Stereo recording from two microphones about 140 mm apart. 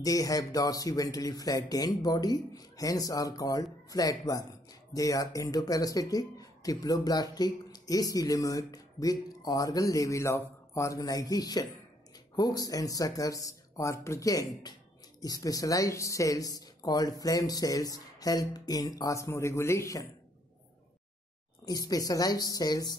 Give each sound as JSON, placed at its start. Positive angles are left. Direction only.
{"t": 0.0, "sound": "speech", "side_deg": 25}
{"t": 21.6, "sound": "speech", "side_deg": 25}